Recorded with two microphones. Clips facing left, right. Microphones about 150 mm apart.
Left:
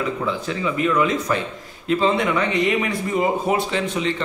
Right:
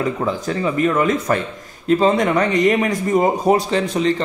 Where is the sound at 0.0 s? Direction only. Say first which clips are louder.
Right 3 dB; 40° right (ahead or behind).